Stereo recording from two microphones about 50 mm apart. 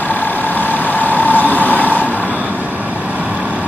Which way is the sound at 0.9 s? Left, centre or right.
Left.